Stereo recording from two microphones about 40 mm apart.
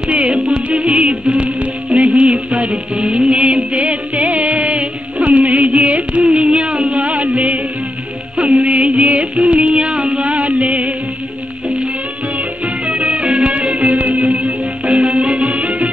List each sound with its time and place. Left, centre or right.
0.1 s music: right
12.6 s music: right